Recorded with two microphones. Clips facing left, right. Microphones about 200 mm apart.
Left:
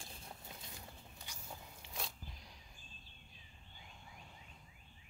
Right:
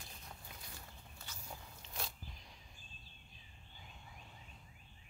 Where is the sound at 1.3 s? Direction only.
10° left (ahead or behind).